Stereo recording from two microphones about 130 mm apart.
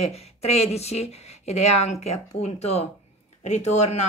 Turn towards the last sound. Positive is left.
turn(degrees=60)  # may be behind; listen again after turning